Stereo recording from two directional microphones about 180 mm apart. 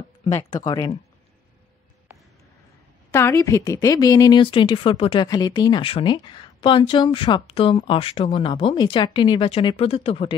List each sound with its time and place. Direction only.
0.5 s a woman's voice: 25° left (ahead or behind)
3.1 s a woman's voice: 15° left (ahead or behind); by 10.3 s 30° left (ahead or behind)